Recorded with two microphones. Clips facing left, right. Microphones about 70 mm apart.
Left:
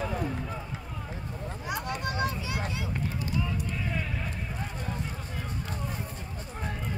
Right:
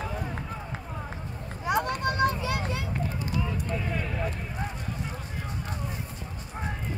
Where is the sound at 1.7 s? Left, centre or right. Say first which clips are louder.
Right 7 dB; right.